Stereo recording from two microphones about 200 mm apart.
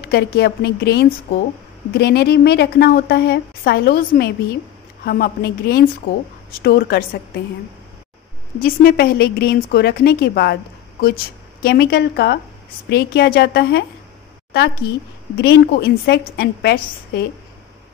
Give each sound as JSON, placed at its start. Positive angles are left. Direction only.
{"t": 0.1, "sound": "a woman's voice", "side_deg": 55}
{"t": 8.6, "sound": "a woman's voice", "side_deg": 50}